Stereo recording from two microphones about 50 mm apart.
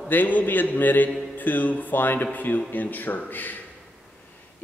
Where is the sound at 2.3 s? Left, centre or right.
Left.